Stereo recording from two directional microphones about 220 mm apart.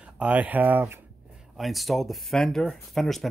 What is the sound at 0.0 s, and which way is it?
Speech, 5° right (ahead or behind).